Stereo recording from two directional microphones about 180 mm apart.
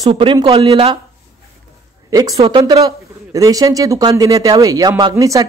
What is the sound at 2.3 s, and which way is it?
Speech, 35° right (ahead or behind).